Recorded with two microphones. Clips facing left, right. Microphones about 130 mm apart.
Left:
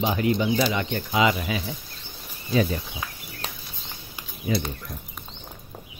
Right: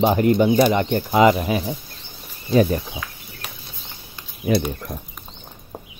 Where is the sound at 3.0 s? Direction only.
20° left (ahead or behind).